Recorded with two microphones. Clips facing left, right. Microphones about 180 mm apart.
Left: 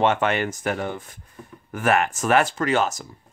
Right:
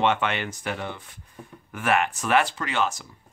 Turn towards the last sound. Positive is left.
turn(degrees=40)  # may be behind; listen again after turning